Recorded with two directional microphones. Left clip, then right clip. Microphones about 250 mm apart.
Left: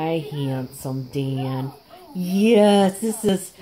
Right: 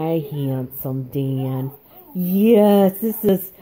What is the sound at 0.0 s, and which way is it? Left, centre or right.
Speech, right.